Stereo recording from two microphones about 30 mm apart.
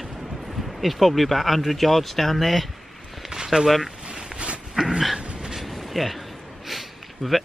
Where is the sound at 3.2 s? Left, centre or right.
Centre.